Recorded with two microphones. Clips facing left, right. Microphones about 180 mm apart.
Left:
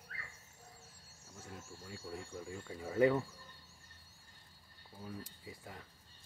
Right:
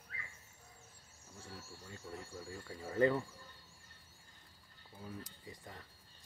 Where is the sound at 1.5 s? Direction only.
15° left (ahead or behind).